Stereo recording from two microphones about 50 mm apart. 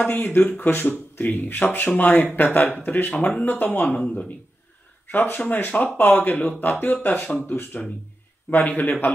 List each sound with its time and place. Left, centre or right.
0.1 s speech: left
3.4 s speech: left
5.0 s speech: left